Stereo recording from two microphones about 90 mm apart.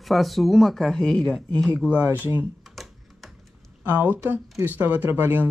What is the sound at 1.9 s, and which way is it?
Speech, 20° right (ahead or behind).